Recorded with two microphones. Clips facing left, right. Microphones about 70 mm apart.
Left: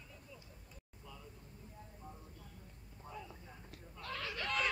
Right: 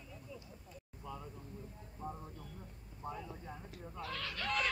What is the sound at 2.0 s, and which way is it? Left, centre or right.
Vehicle, right.